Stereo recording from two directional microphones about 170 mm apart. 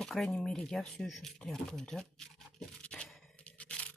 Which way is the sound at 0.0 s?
Centre (ahead or behind).